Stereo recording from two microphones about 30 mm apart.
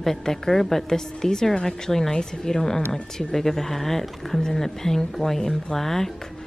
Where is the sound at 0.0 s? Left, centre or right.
Centre.